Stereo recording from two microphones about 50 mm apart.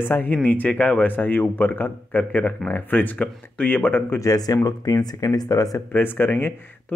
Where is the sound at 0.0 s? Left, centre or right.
Left.